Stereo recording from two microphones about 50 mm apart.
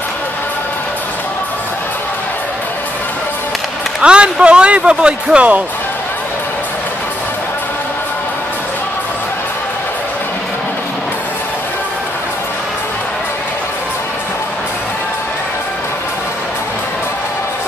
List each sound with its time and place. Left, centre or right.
4.0 s speech: centre